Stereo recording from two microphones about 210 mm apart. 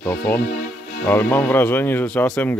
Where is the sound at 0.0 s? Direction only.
10° left (ahead or behind).